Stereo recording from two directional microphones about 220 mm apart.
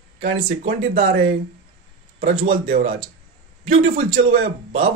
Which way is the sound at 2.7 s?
40° right (ahead or behind).